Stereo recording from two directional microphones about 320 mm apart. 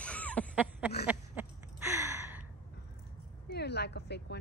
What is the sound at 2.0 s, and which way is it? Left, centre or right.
Gasp, centre.